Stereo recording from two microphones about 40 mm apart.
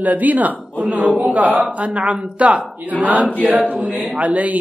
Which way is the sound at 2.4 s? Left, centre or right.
Right.